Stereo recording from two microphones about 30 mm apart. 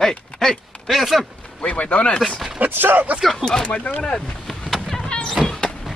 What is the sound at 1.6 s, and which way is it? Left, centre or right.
Speech, left.